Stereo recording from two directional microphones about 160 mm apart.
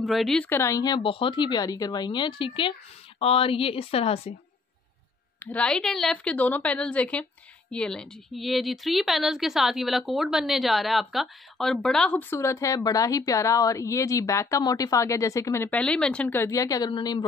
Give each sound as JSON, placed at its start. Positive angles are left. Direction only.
{"t": 0.0, "sound": "speech", "side_deg": 0}
{"t": 0.5, "sound": "a woman's voice", "side_deg": 15}
{"t": 5.4, "sound": "a woman's voice", "side_deg": 10}
{"t": 15.8, "sound": "a woman's voice", "side_deg": 5}